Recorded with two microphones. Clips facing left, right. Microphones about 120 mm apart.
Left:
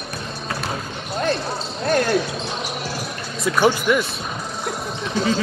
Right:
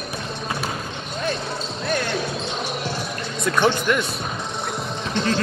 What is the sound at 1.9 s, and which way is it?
Basketball bounce, 40° left (ahead or behind).